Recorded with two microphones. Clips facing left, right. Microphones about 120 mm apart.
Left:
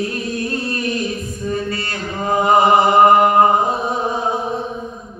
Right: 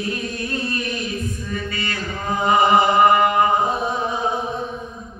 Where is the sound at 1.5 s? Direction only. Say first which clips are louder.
Left 9 dB; 40° left (ahead or behind).